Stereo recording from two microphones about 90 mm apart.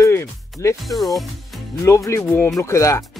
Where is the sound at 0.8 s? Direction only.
Centre (ahead or behind).